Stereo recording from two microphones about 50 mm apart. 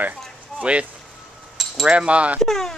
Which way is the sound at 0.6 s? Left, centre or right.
Right.